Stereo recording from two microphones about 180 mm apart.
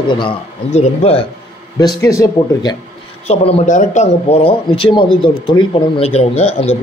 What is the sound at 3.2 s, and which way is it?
Speech, 35° left (ahead or behind).